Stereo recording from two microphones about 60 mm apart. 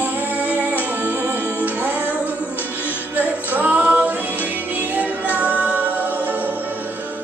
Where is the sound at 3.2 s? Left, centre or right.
Right.